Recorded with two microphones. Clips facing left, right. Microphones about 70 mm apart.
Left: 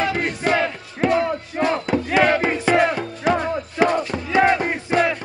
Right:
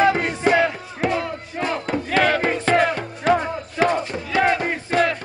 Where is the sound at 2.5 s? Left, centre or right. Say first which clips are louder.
Left 1 dB; centre.